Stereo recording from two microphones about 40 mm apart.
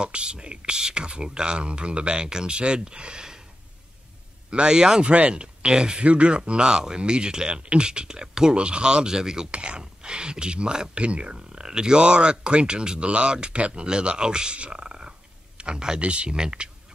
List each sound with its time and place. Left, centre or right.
0.0 s speech: right
4.5 s speech: right